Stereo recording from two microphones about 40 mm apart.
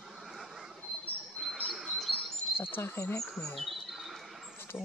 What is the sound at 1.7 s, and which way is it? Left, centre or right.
Chirp, centre.